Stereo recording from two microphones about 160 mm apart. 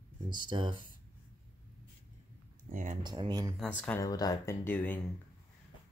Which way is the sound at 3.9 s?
20° left (ahead or behind).